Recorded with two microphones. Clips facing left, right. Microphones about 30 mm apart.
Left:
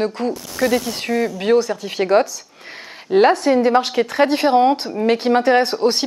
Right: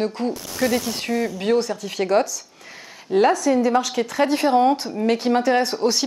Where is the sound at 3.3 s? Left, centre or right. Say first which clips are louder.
Left 3 dB; left.